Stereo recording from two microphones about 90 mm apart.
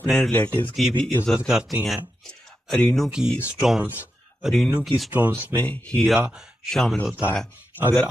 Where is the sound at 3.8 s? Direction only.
20° right (ahead or behind).